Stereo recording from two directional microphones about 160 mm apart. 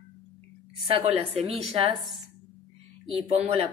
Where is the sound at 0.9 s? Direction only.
35° right (ahead or behind).